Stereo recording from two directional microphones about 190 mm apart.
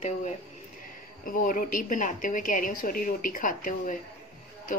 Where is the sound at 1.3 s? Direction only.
45° left (ahead or behind).